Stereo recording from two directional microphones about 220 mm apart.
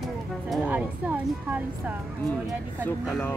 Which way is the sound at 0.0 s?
5° right (ahead or behind).